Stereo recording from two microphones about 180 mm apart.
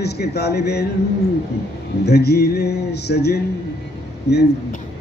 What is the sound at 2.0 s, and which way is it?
A man's voice, 65° left (ahead or behind).